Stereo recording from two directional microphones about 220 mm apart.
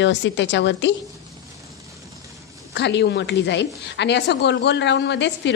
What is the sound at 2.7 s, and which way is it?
A woman's voice, 50° left (ahead or behind).